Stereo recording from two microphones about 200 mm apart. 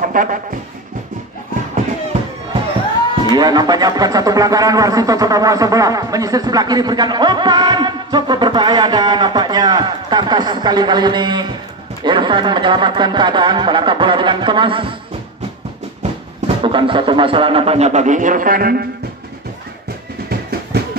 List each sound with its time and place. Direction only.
0.0 s music: 40° right (ahead or behind)
3.3 s speech: 20° right (ahead or behind)
16.0 s speech: 30° right (ahead or behind); by 18.9 s 50° right (ahead or behind)
20.2 s music: 50° right (ahead or behind)